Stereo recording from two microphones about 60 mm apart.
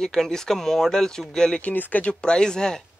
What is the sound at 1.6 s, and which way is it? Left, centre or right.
Speech, left.